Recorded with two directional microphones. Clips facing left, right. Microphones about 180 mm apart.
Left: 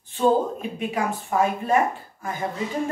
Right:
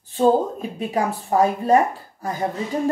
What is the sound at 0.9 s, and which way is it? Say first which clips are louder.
Speech: right 5 dB; 35° right (ahead or behind).